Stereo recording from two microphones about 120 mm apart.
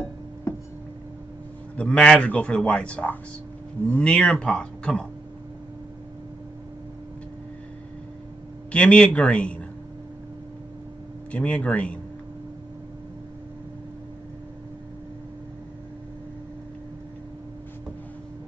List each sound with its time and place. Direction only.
0.5 s a sound: 20° left (ahead or behind)
1.8 s a man's voice: 10° left (ahead or behind)
8.7 s a man's voice: 10° left (ahead or behind)
11.3 s a man's voice: 10° left (ahead or behind)